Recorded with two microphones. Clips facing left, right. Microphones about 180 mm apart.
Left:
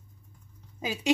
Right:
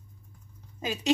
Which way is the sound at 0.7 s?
10° left (ahead or behind).